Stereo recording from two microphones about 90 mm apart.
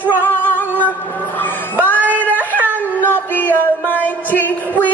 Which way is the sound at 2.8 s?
20° left (ahead or behind).